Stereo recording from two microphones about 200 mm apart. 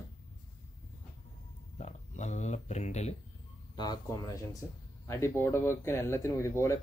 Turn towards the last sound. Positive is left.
turn(degrees=15)  # may be behind; listen again after turning